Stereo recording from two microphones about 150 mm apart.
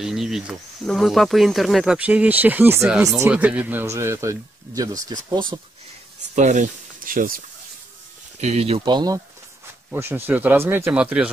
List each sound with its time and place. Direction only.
0.0 s speech: 5° right (ahead or behind)
2.9 s speech: centre (ahead or behind); by 5.6 s 30° right (ahead or behind)
6.3 s speech: 55° right (ahead or behind)
8.4 s speech: 45° right (ahead or behind)
8.8 s speech: 30° right (ahead or behind)
9.8 s speech: 15° right (ahead or behind)